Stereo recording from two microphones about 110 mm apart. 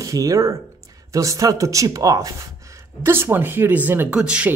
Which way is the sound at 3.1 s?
20° right (ahead or behind).